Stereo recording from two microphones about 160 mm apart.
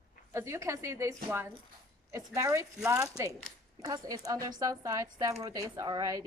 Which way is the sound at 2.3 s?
20° right (ahead or behind).